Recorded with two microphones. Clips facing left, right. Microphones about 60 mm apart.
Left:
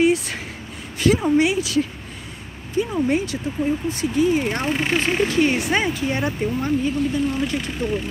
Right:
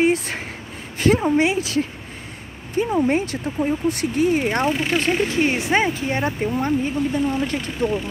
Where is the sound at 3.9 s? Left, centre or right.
Right.